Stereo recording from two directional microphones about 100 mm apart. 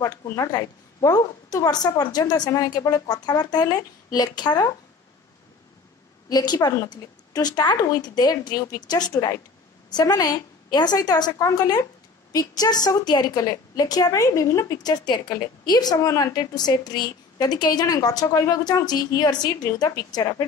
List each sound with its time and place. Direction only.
0.3 s a woman's voice: 40° left (ahead or behind)
6.2 s a woman's voice: 40° left (ahead or behind)